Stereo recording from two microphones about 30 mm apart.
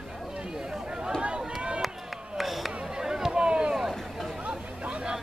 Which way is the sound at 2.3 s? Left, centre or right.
Centre.